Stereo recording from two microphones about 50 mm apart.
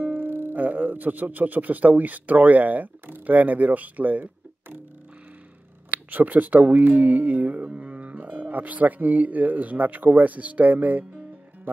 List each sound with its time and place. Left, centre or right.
0.0 s speech: right
5.9 s speech: right